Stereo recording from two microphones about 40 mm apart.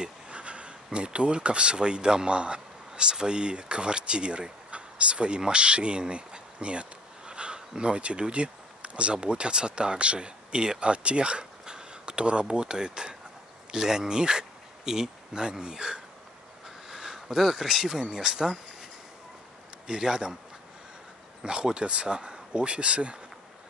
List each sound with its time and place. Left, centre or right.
0.0 s a sound: right
0.9 s speech: right
16.6 s a sound: centre
18.1 s speech: centre
19.9 s speech: centre
21.4 s speech: right